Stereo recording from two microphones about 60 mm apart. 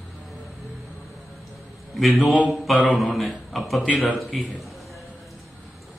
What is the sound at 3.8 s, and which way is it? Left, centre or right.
Speech, left.